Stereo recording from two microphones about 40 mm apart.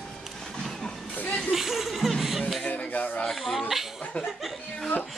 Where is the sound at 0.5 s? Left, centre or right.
Centre.